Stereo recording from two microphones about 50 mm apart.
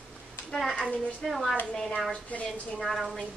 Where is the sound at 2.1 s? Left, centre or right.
Left.